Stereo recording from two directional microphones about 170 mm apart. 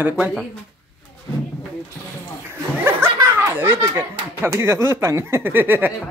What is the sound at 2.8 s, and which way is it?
Speech, 15° right (ahead or behind).